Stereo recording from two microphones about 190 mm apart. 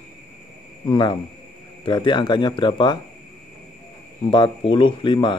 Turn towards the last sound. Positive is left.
turn(degrees=25)  # may be behind; listen again after turning